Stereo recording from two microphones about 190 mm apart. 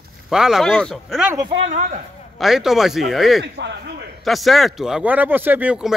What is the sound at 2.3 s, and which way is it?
Speech, centre (ahead or behind).